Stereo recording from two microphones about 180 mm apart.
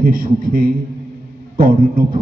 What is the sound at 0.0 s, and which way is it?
A man's voice, 50° right (ahead or behind).